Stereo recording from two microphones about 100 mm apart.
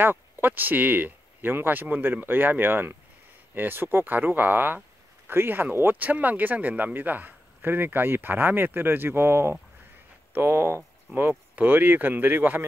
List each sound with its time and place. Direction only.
0.0 s speech: 20° right (ahead or behind)